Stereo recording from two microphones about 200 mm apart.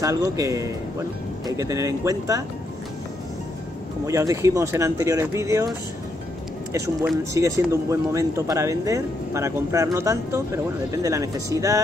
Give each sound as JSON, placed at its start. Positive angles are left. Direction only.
{"t": 0.0, "sound": "speech", "side_deg": -15}
{"t": 4.0, "sound": "speech", "side_deg": -15}
{"t": 7.3, "sound": "speech", "side_deg": -15}